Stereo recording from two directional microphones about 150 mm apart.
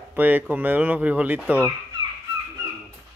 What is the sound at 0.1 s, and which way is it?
Speech, 10° right (ahead or behind).